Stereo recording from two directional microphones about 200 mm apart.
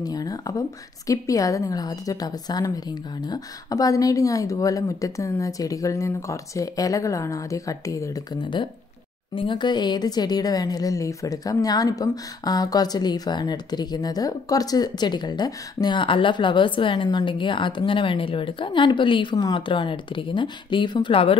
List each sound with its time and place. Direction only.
0.0 s a woman's voice: 20° left (ahead or behind)